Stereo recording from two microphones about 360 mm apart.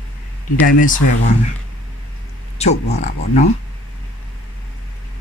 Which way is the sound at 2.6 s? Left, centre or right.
Centre.